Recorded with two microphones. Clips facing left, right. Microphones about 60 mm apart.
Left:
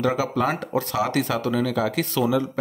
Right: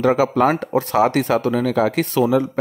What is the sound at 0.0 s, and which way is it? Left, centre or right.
Speech, right.